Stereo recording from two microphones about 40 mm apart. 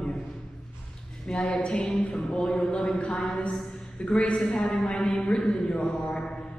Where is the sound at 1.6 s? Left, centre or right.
Left.